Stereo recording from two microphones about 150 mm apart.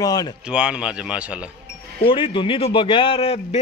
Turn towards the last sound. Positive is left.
turn(degrees=40)  # may be behind; listen again after turning